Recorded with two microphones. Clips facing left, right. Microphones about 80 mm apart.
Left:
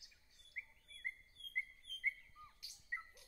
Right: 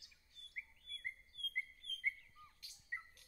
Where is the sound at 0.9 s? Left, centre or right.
Centre.